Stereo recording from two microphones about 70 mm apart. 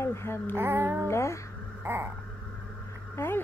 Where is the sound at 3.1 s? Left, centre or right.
Left.